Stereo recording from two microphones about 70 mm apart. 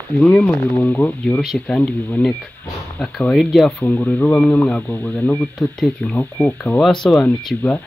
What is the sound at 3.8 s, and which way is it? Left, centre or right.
Speech, left.